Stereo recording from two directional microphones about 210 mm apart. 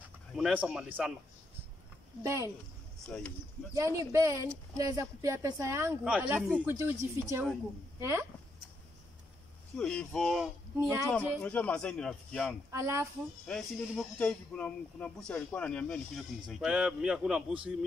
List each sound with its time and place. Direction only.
0.4 s speech: 5° right (ahead or behind)
2.2 s a woman's voice: 15° right (ahead or behind)
3.1 s speech: 5° left (ahead or behind)
3.7 s a woman's voice: 15° right (ahead or behind)
9.8 s speech: 5° left (ahead or behind)
12.7 s a woman's voice: 15° right (ahead or behind)
13.5 s speech: centre (ahead or behind)